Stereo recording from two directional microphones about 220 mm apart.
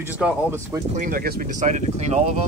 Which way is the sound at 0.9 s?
40° right (ahead or behind).